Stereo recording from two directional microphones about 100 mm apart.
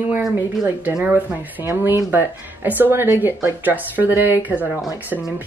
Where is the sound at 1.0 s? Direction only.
15° right (ahead or behind).